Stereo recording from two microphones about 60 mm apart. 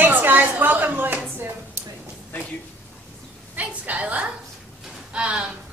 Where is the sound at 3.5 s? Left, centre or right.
Right.